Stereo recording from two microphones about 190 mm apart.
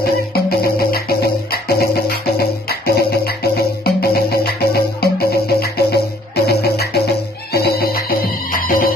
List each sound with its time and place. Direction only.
0.0 s music: 55° left (ahead or behind)